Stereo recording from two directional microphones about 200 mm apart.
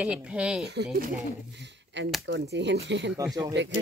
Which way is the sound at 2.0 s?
60° right (ahead or behind).